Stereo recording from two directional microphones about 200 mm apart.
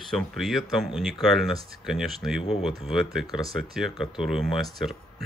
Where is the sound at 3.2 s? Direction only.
20° left (ahead or behind).